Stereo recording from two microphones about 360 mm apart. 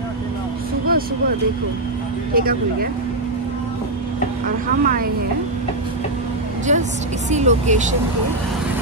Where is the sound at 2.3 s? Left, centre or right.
Right.